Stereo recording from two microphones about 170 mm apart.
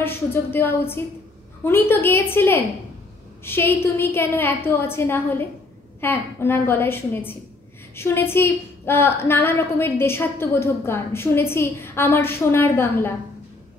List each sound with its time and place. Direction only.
0.0 s a woman's voice: 15° left (ahead or behind)